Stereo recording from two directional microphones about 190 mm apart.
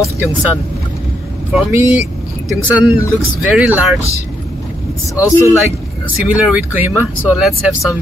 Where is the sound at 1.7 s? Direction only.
15° right (ahead or behind).